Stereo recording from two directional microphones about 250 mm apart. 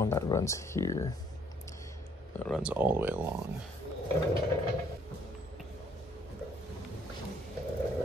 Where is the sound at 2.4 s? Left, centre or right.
Centre.